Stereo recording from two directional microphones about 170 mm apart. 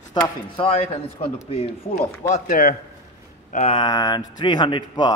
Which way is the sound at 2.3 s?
55° left (ahead or behind).